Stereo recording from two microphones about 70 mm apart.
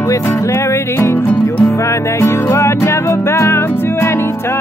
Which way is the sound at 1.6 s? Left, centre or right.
Left.